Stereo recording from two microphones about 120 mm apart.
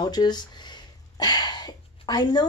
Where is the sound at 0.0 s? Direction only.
35° left (ahead or behind).